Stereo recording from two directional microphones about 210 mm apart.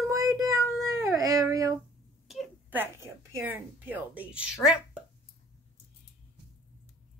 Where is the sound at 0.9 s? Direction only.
15° right (ahead or behind).